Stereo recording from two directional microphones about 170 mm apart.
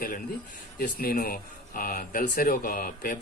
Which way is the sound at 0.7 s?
60° left (ahead or behind).